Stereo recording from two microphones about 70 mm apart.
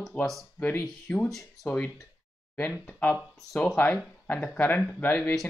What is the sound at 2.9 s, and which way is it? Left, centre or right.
Speech, left.